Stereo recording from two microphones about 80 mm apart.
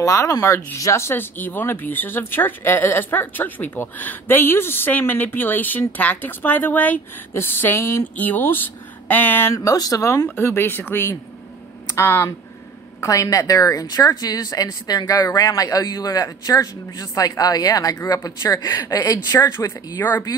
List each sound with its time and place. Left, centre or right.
0.0 s speech: left
9.7 s speech: left
10.0 s speech: left
13.0 s speech: left
19.6 s speech: left
20.0 s speech: left